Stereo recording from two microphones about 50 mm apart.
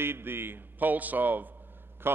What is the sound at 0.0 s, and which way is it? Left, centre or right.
Speech, right.